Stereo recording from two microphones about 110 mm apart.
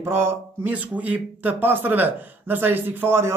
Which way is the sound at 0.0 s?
20° right (ahead or behind).